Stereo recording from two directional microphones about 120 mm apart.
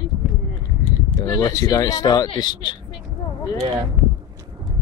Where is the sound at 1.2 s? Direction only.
30° left (ahead or behind).